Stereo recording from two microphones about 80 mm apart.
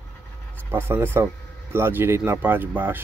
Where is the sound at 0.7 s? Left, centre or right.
Right.